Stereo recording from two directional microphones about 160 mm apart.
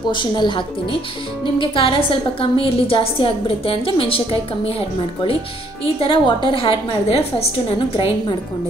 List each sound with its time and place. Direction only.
0.1 s a woman's voice: 30° left (ahead or behind)